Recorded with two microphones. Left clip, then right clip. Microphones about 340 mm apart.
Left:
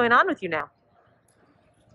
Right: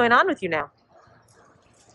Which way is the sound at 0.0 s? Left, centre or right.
Centre.